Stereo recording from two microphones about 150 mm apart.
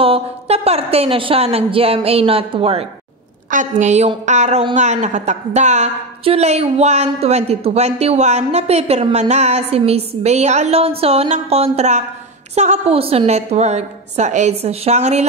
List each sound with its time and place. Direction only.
0.0 s a woman's voice: 40° right (ahead or behind)
3.4 s a woman's voice: 55° right (ahead or behind)